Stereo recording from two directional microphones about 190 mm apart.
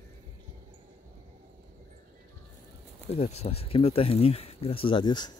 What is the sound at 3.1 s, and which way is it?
Speech, 35° left (ahead or behind).